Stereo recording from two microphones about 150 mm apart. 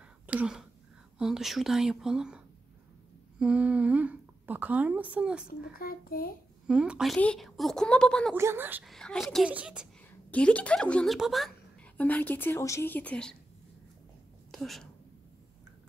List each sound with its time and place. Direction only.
0.3 s a woman's voice: 5° right (ahead or behind)
5.5 s a child's voice: 70° left (ahead or behind)
6.7 s a woman's voice: 5° right (ahead or behind)
8.4 s a woman's voice: 15° right (ahead or behind)
8.8 s a woman's voice: 5° left (ahead or behind)
10.3 s speech: 10° left (ahead or behind)
11.1 s a sound: centre (ahead or behind)
12.0 s speech: 10° left (ahead or behind)
14.5 s speech: centre (ahead or behind)